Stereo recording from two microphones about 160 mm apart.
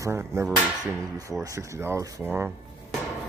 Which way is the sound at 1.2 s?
20° right (ahead or behind).